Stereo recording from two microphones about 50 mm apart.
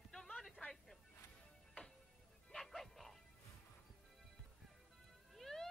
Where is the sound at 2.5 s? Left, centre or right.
Centre.